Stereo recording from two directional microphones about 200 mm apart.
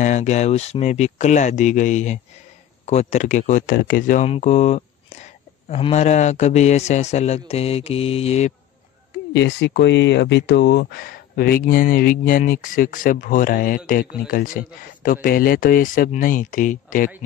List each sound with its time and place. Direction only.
0.0 s speech: 35° left (ahead or behind)
9.3 s speech: 60° left (ahead or behind); by 17.1 s 40° left (ahead or behind)